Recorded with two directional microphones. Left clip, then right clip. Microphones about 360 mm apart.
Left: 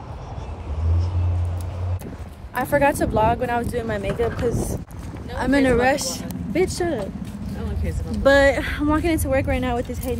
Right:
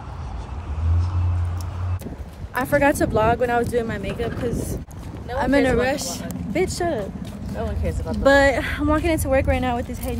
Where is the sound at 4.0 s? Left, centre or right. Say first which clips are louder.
Left 4 dB; centre.